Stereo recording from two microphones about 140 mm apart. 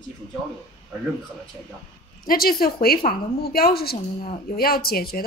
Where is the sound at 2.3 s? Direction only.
90° left.